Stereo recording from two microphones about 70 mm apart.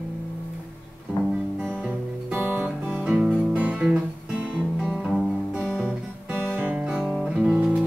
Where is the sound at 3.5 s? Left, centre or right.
Centre.